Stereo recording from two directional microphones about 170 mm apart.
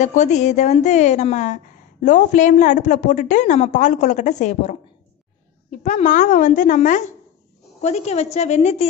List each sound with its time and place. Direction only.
0.0 s a woman's voice: 45° left (ahead or behind)